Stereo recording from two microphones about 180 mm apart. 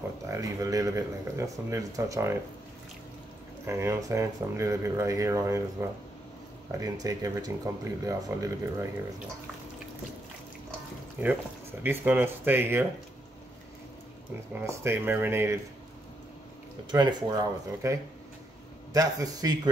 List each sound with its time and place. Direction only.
0.3 s speech: 20° right (ahead or behind)
3.6 s speech: 15° right (ahead or behind)
11.2 s speech: 10° right (ahead or behind)
14.5 s speech: 15° right (ahead or behind)
16.9 s speech: 25° right (ahead or behind)
18.9 s speech: 20° right (ahead or behind)